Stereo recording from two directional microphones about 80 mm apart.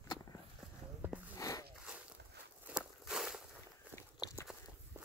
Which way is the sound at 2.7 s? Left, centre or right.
Centre.